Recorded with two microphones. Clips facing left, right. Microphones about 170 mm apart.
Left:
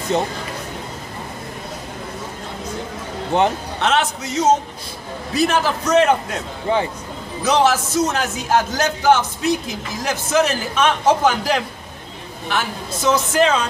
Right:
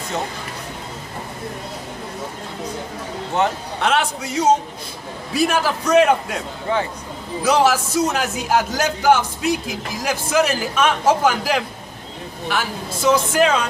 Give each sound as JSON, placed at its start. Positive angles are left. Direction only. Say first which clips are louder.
{"t": 3.8, "sound": "a man's voice", "louder": "even", "side_deg": -10}
{"t": 6.7, "sound": "speech", "louder": "left 2 dB", "side_deg": 15}
{"t": 7.4, "sound": "a man's voice", "louder": "even", "side_deg": -10}